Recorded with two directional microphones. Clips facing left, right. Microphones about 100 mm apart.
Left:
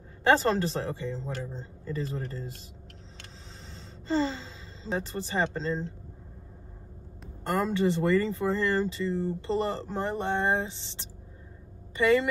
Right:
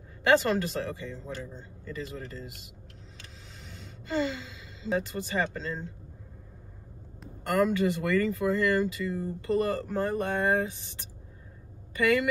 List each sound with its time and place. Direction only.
0.2 s speech: 30° left (ahead or behind)
3.7 s speech: 30° left (ahead or behind)
7.4 s speech: 25° left (ahead or behind)